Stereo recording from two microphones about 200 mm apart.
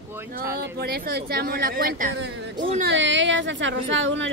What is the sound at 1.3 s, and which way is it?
Speech, 45° right (ahead or behind).